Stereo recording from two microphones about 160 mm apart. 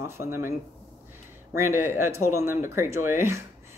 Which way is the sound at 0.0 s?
15° right (ahead or behind).